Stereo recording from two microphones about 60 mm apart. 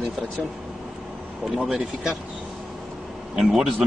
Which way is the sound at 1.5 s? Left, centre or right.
Centre.